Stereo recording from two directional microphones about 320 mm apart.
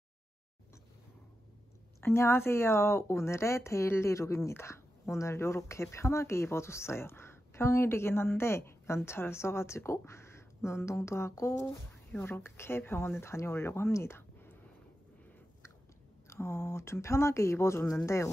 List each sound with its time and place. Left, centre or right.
2.0 s speech: centre
16.3 s speech: centre